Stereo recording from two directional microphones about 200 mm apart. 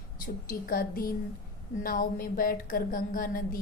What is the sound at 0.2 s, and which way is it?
A woman's voice, 45° left (ahead or behind).